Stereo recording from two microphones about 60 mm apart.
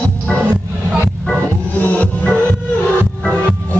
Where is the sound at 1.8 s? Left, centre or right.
Left.